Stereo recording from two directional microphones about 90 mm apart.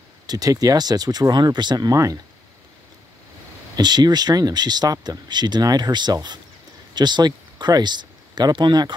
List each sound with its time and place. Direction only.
0.3 s speech: 45° right (ahead or behind)
3.7 s speech: 50° right (ahead or behind)